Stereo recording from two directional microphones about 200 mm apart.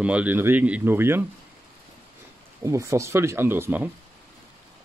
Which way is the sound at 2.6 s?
15° right (ahead or behind).